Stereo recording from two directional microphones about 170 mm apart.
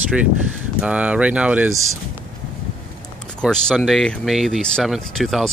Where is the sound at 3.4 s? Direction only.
5° right (ahead or behind).